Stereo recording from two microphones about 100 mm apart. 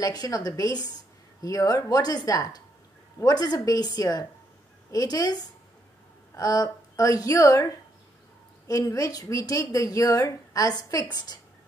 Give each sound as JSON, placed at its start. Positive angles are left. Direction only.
{"t": 0.0, "sound": "speech", "side_deg": 40}
{"t": 8.6, "sound": "speech", "side_deg": 35}